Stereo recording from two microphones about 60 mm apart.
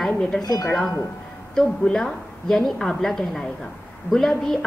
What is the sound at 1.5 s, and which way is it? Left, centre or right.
A woman's voice, centre.